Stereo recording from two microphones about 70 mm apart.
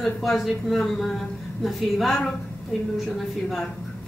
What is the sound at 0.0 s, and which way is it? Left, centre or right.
A woman's voice, centre.